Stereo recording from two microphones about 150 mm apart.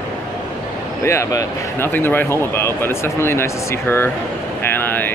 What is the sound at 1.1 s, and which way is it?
Speech, 20° left (ahead or behind).